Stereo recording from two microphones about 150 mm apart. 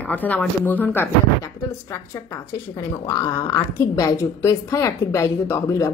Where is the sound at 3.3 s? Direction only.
20° left (ahead or behind).